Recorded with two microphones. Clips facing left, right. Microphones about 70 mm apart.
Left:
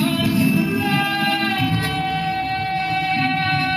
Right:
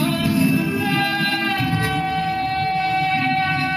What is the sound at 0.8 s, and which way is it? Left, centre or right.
Music, centre.